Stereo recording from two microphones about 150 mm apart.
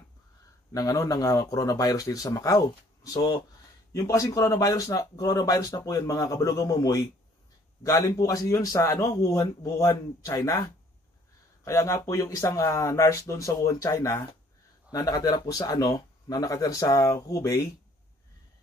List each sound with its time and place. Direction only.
0.7 s speech: 25° left (ahead or behind)